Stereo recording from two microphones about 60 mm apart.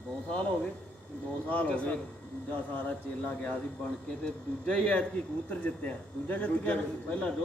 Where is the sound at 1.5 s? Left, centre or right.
Left.